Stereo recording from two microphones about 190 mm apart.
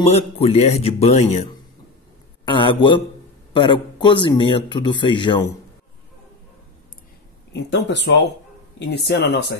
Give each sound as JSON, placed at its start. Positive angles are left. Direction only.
{"t": 0.0, "sound": "speech", "side_deg": 35}
{"t": 7.5, "sound": "a man's voice", "side_deg": 65}